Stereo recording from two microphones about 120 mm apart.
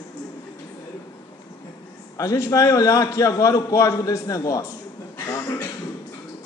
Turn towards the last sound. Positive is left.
turn(degrees=30)  # may be behind; listen again after turning